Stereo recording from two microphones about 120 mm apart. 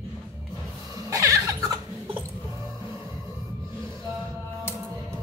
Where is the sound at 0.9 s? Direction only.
30° right (ahead or behind).